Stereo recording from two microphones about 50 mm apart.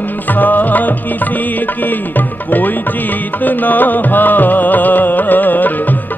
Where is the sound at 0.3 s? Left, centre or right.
Left.